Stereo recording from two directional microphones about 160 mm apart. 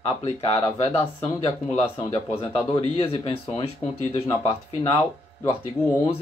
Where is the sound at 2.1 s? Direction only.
35° left (ahead or behind).